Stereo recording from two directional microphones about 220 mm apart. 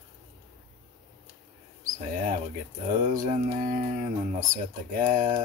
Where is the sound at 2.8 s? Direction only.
35° right (ahead or behind).